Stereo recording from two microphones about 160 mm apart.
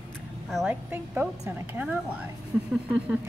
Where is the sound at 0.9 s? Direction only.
10° right (ahead or behind).